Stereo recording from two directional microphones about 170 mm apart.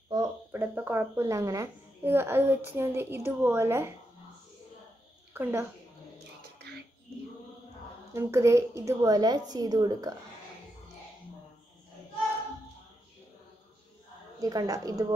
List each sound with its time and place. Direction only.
0.1 s a woman's voice: 20° right (ahead or behind)
5.3 s a woman's voice: 15° right (ahead or behind)
8.1 s a woman's voice: 15° right (ahead or behind)
14.4 s a woman's voice: 20° right (ahead or behind)